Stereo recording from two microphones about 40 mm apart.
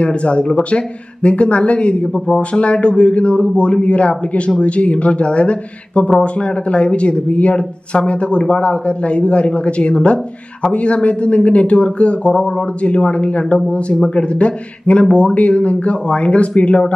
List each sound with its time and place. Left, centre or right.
0.0 s speech: left
2.2 s a man's voice: centre
2.6 s speech: left